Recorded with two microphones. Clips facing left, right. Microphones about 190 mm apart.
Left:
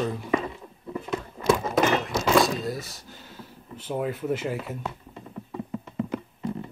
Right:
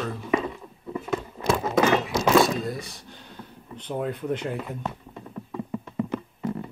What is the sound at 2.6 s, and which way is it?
Speech, centre (ahead or behind).